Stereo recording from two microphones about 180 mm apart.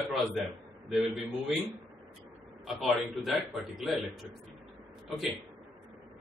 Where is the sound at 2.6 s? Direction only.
Centre (ahead or behind).